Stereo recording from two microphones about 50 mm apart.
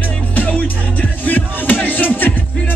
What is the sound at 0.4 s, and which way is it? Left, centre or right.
Music, left.